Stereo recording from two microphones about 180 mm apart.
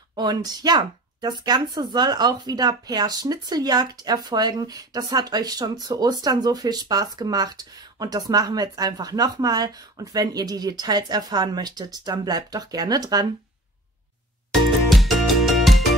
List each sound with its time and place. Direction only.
0.1 s speech: 20° right (ahead or behind)
14.5 s music: centre (ahead or behind)